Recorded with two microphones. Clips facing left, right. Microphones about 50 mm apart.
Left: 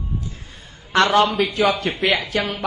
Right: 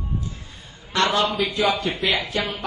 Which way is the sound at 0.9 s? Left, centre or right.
Left.